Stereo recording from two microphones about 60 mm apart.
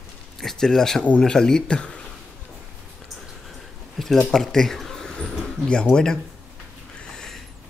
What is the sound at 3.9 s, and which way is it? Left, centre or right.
A man's voice, centre.